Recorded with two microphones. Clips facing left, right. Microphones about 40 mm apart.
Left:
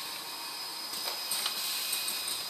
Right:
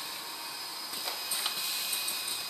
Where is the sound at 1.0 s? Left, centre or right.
Centre.